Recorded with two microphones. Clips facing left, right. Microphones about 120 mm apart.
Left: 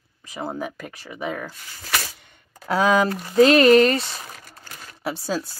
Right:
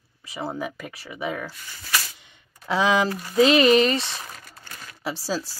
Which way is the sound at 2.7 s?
55° left (ahead or behind).